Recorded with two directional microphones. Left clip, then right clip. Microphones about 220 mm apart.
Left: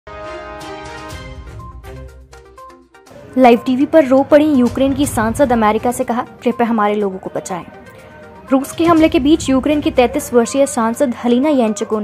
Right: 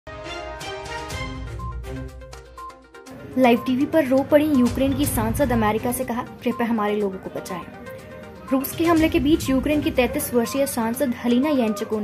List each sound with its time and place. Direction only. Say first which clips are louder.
3.3 s a woman's voice: left 8 dB; 15° left (ahead or behind)